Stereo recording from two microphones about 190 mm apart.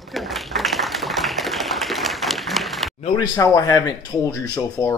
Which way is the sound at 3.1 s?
15° left (ahead or behind).